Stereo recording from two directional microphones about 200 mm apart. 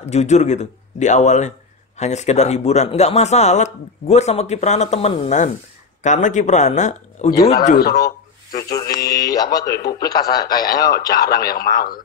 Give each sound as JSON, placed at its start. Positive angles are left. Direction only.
{"t": 0.0, "sound": "speech", "side_deg": 35}
{"t": 8.0, "sound": "speech", "side_deg": 20}
{"t": 11.5, "sound": "speech", "side_deg": 45}